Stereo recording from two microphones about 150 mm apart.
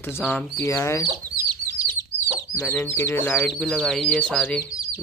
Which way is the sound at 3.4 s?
5° left (ahead or behind).